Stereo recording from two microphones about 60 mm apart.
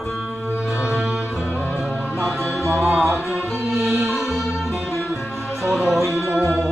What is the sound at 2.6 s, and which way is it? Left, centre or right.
Music, right.